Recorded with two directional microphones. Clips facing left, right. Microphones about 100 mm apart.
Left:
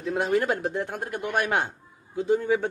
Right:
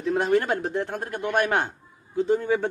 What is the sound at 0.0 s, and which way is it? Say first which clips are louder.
A man's voice: right 2 dB; 5° left (ahead or behind).